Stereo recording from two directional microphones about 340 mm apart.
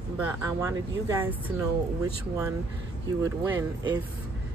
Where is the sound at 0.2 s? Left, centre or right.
Centre.